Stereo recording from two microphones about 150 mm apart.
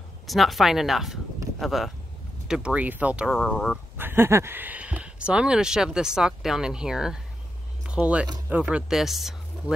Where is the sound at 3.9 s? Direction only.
15° right (ahead or behind).